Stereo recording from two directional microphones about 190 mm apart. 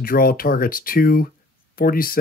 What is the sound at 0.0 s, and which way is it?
Speech, 50° left (ahead or behind).